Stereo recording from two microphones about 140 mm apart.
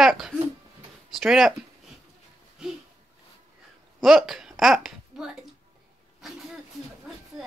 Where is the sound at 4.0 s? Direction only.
Centre (ahead or behind).